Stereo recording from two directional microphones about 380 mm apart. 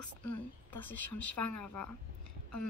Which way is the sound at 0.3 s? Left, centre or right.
Left.